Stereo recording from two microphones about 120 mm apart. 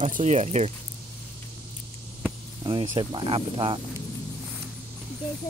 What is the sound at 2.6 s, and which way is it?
Speech, 40° right (ahead or behind).